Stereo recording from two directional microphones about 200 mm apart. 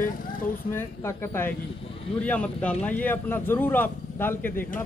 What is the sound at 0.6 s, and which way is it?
A man's voice, 10° left (ahead or behind).